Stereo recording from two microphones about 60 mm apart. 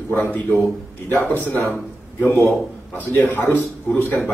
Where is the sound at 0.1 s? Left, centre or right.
Left.